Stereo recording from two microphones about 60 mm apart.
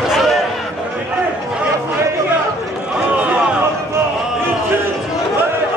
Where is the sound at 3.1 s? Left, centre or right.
Right.